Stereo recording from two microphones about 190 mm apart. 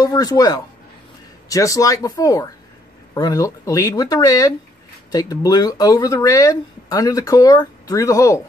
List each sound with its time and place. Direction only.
0.0 s speech: 20° left (ahead or behind)